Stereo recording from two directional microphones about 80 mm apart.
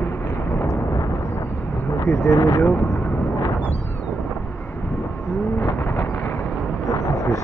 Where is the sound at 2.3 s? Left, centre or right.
Left.